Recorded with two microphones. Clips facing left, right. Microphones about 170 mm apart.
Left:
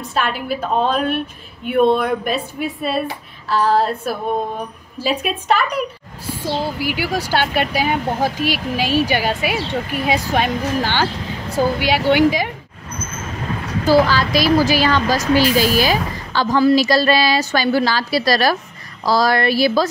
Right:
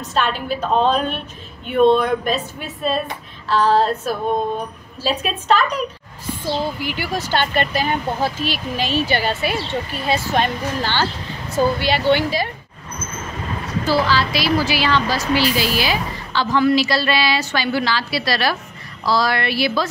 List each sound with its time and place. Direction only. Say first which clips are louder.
0.1 s a woman's voice: even; 10° left (ahead or behind)
13.8 s a woman's voice: left 5 dB; 45° left (ahead or behind)